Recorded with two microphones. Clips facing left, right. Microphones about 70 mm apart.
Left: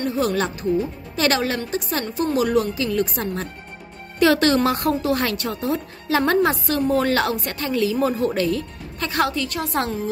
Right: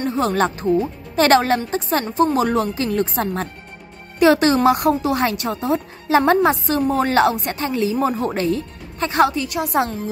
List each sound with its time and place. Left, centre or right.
0.0 s speech: right
4.2 s a woman's voice: right